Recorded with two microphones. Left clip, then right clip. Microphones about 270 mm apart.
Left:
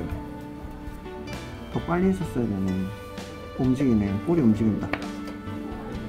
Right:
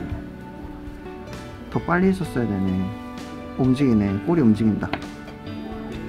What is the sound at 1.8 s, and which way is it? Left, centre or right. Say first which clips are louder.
Speech: right 4 dB; centre.